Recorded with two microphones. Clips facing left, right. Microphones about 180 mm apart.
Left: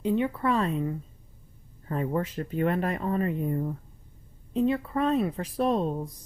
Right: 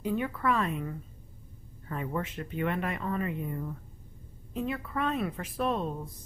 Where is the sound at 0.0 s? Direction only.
25° left (ahead or behind).